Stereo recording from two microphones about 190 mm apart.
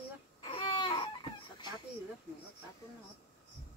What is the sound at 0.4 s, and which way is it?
Baby cry, 25° left (ahead or behind).